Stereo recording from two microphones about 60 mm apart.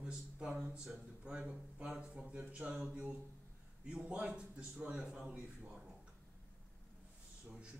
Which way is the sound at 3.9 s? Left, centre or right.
Centre.